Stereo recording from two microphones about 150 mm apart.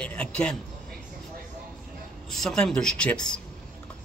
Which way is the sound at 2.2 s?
5° left (ahead or behind).